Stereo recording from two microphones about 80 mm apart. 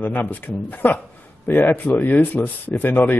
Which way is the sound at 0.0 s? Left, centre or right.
Left.